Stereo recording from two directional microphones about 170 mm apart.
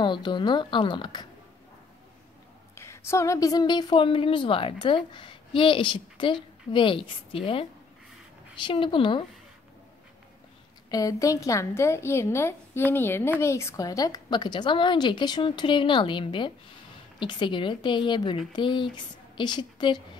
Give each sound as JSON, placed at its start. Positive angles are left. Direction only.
{"t": 0.0, "sound": "a woman's voice", "side_deg": 25}
{"t": 2.7, "sound": "a woman's voice", "side_deg": 15}
{"t": 10.9, "sound": "a woman's voice", "side_deg": 20}